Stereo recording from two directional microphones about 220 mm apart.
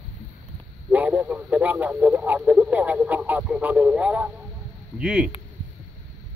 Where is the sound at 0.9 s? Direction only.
5° right (ahead or behind).